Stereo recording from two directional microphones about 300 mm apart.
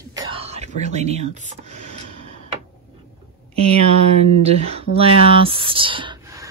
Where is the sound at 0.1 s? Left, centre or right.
Centre.